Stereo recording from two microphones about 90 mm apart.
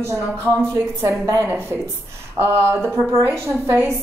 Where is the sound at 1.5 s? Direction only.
25° right (ahead or behind).